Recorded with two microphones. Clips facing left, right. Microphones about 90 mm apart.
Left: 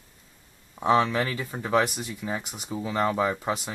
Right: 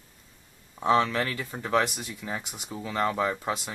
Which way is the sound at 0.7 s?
10° left (ahead or behind).